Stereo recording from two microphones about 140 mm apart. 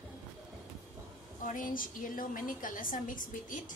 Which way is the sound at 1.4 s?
75° left (ahead or behind).